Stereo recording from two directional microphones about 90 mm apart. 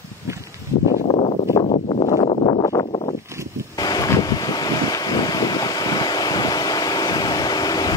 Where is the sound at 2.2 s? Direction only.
60° left (ahead or behind).